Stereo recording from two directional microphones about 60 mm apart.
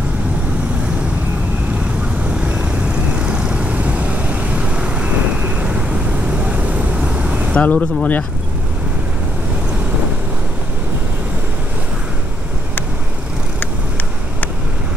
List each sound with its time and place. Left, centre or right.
2.4 s vehicle: centre
7.5 s speech: left